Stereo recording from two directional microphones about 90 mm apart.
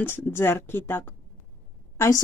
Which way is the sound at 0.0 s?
25° left (ahead or behind).